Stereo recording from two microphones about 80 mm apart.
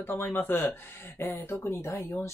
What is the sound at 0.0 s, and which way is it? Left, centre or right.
Speech, left.